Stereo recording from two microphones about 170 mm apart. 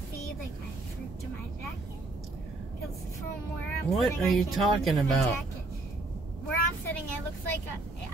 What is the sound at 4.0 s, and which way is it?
Speech, centre (ahead or behind).